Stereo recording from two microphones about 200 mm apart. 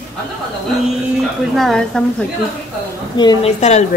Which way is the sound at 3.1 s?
20° left (ahead or behind).